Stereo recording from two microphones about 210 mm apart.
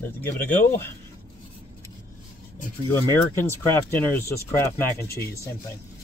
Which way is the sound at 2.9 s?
10° left (ahead or behind).